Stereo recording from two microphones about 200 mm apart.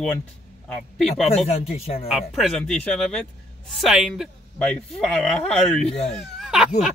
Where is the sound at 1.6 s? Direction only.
30° left (ahead or behind).